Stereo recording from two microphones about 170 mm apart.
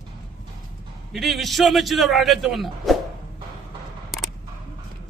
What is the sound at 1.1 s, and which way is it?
Speech, centre (ahead or behind).